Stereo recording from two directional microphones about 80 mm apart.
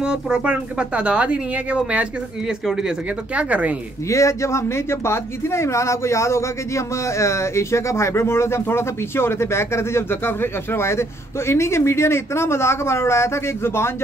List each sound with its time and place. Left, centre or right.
0.0 s speech: centre
4.1 s speech: left